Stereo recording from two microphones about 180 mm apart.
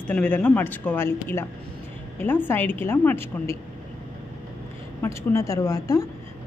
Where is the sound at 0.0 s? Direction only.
5° left (ahead or behind).